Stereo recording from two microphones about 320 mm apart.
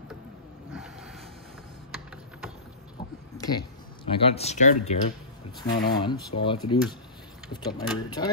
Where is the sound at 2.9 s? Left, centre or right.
Centre.